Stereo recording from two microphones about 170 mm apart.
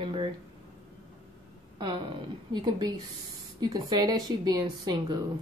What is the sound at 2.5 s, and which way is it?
Speech, 25° right (ahead or behind).